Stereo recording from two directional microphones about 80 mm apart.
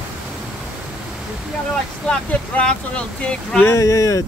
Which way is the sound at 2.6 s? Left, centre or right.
Centre.